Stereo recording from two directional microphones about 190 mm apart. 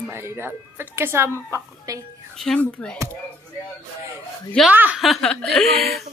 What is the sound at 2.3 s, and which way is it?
Chuckle, 5° left (ahead or behind).